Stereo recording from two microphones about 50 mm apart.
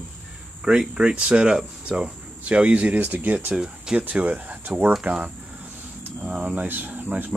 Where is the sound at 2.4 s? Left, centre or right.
Right.